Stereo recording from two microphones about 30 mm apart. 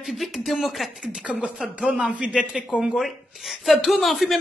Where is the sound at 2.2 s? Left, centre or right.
Right.